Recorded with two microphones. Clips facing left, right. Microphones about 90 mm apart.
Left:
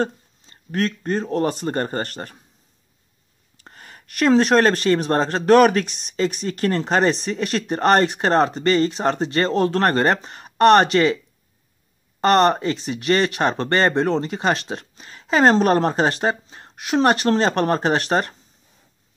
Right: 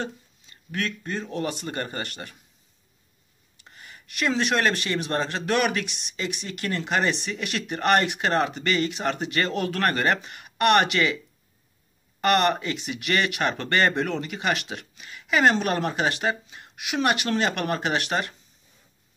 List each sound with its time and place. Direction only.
0.0 s speech: 40° left (ahead or behind)
3.5 s speech: 45° left (ahead or behind)
12.2 s speech: 30° left (ahead or behind)